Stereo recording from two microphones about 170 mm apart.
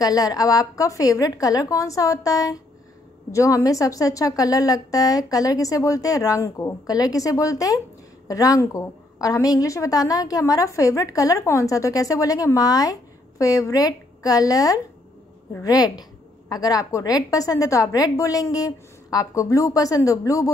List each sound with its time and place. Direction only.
0.0 s a woman's voice: 20° left (ahead or behind)